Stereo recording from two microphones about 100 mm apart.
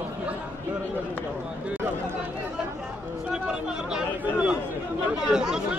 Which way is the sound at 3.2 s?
10° right (ahead or behind).